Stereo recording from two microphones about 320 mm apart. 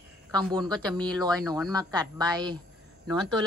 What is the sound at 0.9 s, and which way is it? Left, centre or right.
Speech, centre.